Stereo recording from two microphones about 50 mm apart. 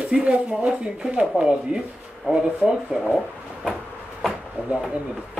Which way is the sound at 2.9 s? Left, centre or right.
Centre.